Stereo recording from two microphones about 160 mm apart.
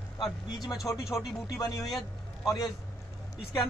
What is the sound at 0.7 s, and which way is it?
Speech, 20° left (ahead or behind).